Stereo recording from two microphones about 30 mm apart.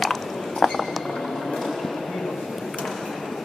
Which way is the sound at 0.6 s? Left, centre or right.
Centre.